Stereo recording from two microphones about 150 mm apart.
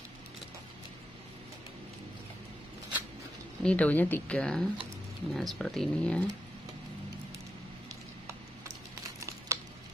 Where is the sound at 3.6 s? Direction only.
10° left (ahead or behind).